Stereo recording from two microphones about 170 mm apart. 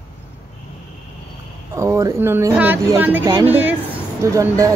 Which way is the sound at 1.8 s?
15° right (ahead or behind).